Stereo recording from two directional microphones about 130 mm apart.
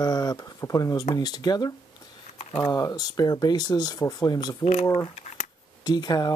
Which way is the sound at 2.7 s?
25° left (ahead or behind).